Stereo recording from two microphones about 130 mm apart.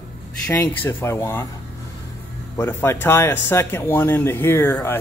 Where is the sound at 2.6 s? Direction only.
20° left (ahead or behind).